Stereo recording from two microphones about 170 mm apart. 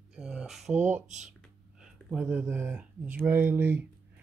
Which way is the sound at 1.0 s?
45° right (ahead or behind).